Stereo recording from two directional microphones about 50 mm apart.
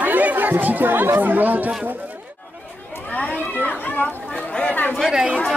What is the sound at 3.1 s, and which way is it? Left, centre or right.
Children playing, left.